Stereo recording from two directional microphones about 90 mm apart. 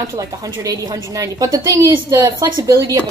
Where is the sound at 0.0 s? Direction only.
40° right (ahead or behind).